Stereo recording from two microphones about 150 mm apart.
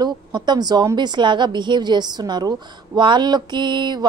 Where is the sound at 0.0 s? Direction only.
30° right (ahead or behind).